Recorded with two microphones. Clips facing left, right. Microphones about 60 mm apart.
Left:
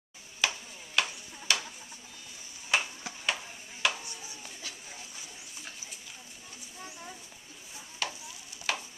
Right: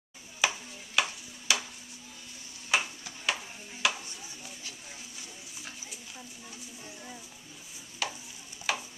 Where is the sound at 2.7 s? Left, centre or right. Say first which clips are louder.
Even; centre.